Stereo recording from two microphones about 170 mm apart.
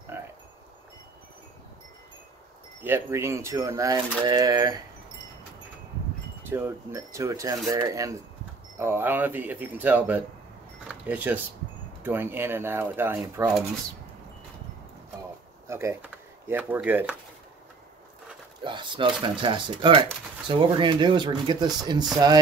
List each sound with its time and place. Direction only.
0.1 s wind chime: 15° right (ahead or behind)
2.8 s speech: 15° right (ahead or behind)
6.4 s speech: 10° right (ahead or behind)
10.9 s keys jangling: 10° right (ahead or behind)
12.0 s speech: 10° right (ahead or behind)
15.6 s speech: 15° right (ahead or behind)
18.6 s speech: 30° right (ahead or behind)